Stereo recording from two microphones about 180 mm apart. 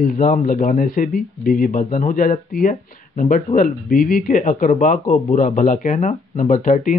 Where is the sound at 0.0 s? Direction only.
50° left (ahead or behind).